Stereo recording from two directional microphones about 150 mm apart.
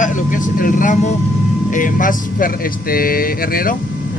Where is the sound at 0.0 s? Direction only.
60° left (ahead or behind).